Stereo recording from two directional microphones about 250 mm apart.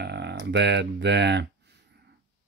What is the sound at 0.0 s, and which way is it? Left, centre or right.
Speech, right.